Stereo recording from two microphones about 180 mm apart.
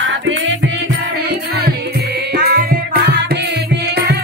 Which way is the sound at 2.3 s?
60° right (ahead or behind).